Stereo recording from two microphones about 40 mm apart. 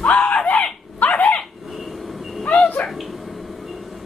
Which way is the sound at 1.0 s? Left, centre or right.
Left.